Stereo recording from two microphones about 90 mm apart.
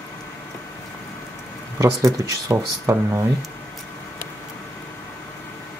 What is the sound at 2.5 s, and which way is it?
Speech, 35° right (ahead or behind).